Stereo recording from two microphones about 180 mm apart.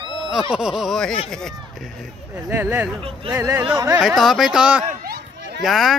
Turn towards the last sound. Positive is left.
turn(degrees=0)  # may be behind; listen again after turning